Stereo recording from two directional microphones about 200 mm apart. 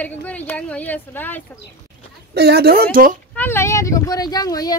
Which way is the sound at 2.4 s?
55° right (ahead or behind).